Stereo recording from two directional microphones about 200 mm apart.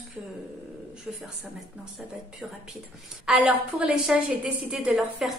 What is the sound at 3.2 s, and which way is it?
A woman's voice, centre (ahead or behind).